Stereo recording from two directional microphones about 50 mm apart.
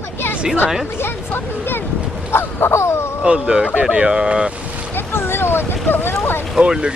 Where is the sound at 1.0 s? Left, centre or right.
Left.